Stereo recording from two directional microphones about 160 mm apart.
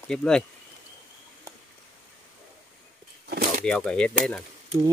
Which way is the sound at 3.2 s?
85° right.